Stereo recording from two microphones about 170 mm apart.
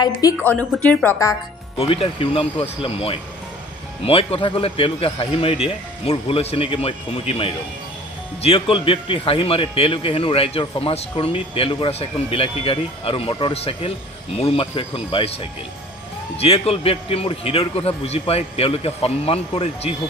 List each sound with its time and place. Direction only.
0.0 s a woman's voice: 20° left (ahead or behind)
1.8 s a man's voice: 35° left (ahead or behind)
16.3 s a man's voice: 35° left (ahead or behind)